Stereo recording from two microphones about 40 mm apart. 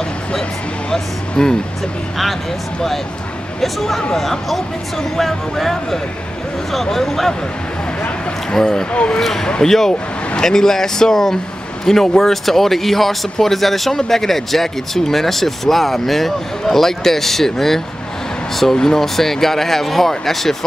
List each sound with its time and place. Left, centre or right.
0.3 s speech: centre
3.6 s speech: centre
8.5 s speech: centre